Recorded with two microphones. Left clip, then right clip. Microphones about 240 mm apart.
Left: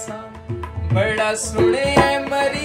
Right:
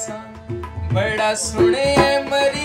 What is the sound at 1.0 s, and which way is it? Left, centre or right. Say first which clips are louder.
Music: even; centre.